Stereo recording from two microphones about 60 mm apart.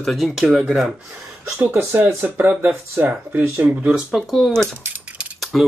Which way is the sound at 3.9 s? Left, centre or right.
Centre.